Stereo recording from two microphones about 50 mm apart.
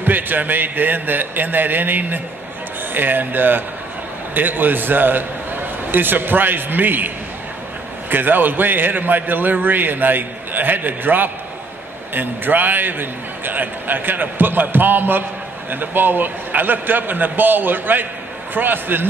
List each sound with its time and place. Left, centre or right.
0.0 s a man's voice: right
8.1 s a man's voice: right